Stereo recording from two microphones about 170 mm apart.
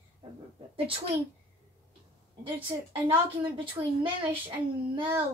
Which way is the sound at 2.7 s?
25° right (ahead or behind).